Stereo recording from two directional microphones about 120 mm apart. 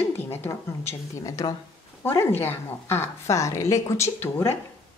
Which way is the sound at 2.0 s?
20° left (ahead or behind).